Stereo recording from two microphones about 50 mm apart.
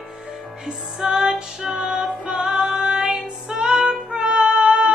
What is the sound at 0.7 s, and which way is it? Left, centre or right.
Music, centre.